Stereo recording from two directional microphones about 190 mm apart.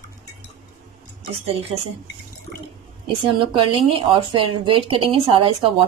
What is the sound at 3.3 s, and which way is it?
Speech, 25° right (ahead or behind).